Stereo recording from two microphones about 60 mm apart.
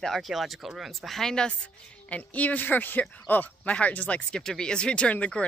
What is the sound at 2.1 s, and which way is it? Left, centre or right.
Speech, left.